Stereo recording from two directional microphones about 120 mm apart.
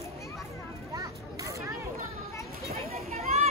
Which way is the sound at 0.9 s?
30° right (ahead or behind).